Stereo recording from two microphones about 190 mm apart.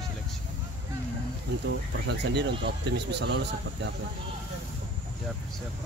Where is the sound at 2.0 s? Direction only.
65° right (ahead or behind).